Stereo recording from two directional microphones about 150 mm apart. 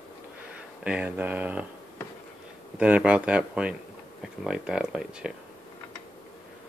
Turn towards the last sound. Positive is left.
turn(degrees=-5)  # may be behind; listen again after turning